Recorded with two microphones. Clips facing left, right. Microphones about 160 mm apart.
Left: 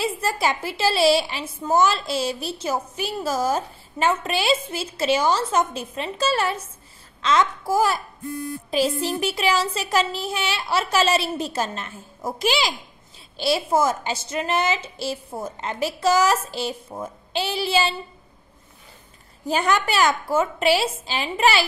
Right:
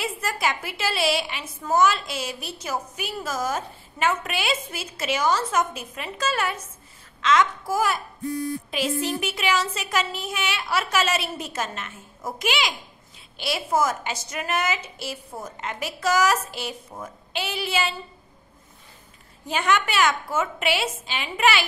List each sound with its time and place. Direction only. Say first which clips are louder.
0.0 s a woman's voice: left 4 dB; 30° left (ahead or behind)
19.4 s a woman's voice: left 2 dB; 35° left (ahead or behind)